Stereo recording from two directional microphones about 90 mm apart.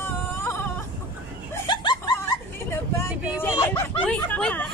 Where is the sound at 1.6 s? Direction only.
55° left (ahead or behind).